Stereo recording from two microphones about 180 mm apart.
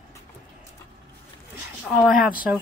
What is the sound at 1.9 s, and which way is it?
Speech, 5° right (ahead or behind).